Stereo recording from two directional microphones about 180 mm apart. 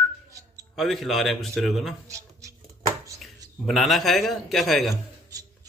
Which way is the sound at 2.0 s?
15° right (ahead or behind).